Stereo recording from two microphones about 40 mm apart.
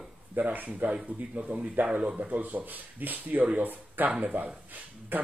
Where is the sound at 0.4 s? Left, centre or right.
Right.